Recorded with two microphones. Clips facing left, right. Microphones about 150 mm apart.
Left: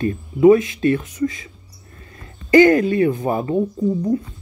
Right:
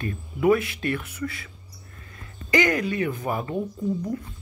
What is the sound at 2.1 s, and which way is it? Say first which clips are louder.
Speech: left 9 dB; 30° left (ahead or behind).